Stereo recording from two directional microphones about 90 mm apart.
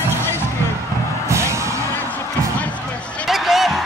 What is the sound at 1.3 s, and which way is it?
Music, 30° right (ahead or behind).